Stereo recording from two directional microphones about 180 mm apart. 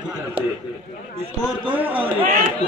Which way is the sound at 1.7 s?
10° right (ahead or behind).